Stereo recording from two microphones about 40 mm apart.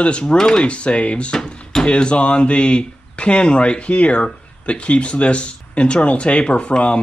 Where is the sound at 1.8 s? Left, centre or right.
Left.